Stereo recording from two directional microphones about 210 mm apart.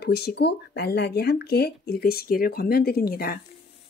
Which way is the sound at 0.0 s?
50° left (ahead or behind).